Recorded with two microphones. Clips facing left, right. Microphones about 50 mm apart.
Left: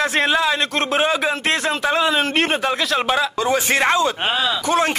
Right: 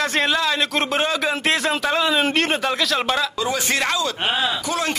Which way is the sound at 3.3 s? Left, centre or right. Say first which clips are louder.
Left 4 dB; left.